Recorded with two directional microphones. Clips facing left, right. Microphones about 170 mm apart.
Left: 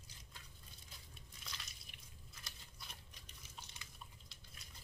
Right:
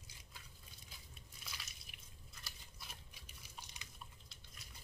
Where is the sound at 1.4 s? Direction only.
5° right (ahead or behind).